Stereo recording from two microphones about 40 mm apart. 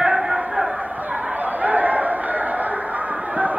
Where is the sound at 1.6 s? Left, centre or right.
Right.